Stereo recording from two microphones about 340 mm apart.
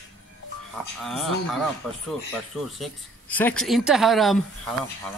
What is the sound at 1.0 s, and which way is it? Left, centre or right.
Speech, centre.